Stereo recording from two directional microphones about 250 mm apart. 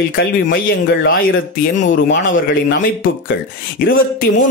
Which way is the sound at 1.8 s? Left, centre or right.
Left.